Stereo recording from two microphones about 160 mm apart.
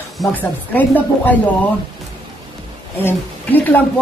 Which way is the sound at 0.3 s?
10° left (ahead or behind).